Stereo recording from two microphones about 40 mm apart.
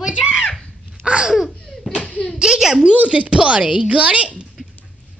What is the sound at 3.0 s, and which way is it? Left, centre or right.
A woman's voice, right.